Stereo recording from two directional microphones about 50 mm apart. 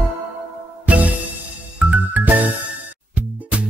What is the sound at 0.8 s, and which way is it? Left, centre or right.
Music, right.